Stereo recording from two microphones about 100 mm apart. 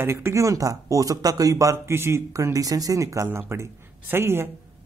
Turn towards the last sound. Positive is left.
turn(degrees=-25)  # may be behind; listen again after turning